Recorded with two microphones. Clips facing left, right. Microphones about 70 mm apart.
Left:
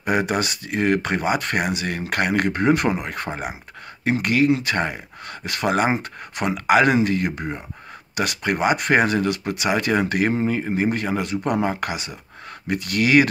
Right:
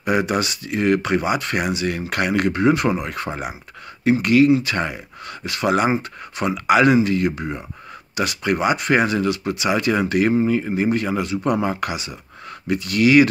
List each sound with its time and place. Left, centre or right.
0.0 s speech: left